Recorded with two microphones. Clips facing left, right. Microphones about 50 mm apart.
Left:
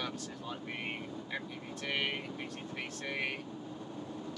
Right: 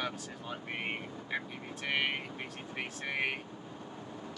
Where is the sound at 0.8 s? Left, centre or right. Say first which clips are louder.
Right 2 dB; right.